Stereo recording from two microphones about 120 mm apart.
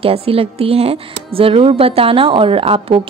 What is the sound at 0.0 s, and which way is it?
Speech, 50° right (ahead or behind).